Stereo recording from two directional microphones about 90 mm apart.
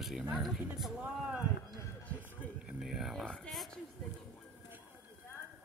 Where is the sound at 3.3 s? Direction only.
5° left (ahead or behind).